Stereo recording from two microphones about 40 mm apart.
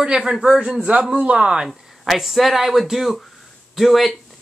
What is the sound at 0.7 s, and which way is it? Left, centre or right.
Speech, right.